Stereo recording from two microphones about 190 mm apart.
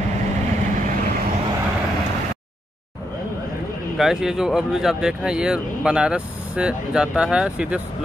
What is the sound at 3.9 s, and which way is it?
Speech, centre (ahead or behind).